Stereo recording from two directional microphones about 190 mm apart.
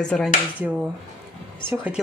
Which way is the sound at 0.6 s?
5° right (ahead or behind).